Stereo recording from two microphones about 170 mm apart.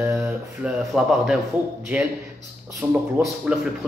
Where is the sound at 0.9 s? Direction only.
5° right (ahead or behind).